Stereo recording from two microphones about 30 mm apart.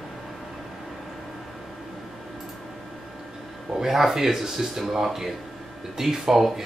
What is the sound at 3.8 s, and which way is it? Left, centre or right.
Speech, centre.